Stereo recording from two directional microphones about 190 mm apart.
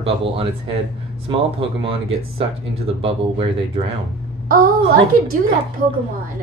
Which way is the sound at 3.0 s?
25° right (ahead or behind).